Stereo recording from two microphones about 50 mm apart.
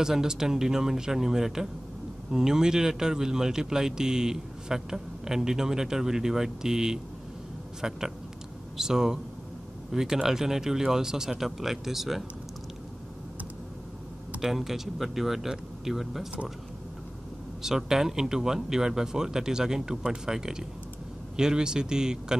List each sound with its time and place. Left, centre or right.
0.0 s speech: centre
14.4 s speech: centre
17.6 s speech: centre